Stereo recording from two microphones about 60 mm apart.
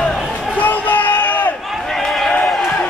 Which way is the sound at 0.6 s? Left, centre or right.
Left.